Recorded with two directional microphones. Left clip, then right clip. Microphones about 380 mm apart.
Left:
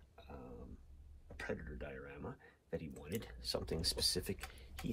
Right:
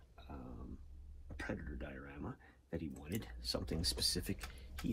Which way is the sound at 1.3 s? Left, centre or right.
Centre.